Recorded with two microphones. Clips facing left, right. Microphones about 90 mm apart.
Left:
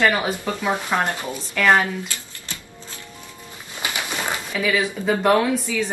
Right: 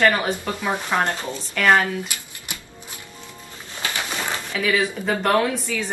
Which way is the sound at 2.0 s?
15° right (ahead or behind).